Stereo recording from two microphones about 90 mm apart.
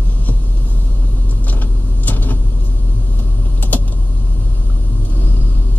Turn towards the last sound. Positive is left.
turn(degrees=20)  # may be behind; listen again after turning